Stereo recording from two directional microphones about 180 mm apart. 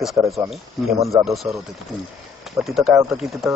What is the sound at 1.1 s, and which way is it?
Speech, centre (ahead or behind).